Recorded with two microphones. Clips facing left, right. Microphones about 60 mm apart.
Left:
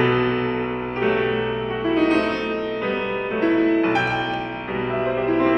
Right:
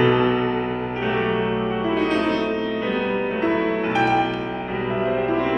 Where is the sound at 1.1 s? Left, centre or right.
Centre.